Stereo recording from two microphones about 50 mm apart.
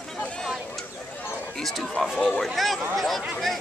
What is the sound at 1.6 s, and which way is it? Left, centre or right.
Speech, centre.